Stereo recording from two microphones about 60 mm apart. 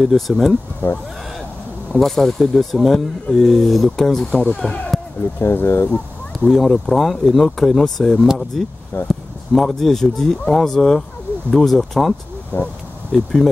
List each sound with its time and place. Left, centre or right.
0.0 s speech: centre
0.8 s speech: left
2.0 s speech: centre
4.3 s speech: left
5.4 s speech: left
6.4 s speech: centre
12.5 s speech: left
13.1 s speech: centre